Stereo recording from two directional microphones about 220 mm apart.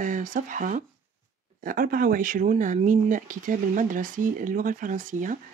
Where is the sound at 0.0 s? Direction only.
35° right (ahead or behind).